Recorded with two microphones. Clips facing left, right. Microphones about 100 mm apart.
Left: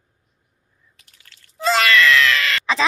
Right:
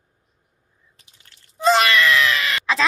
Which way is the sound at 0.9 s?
25° right (ahead or behind).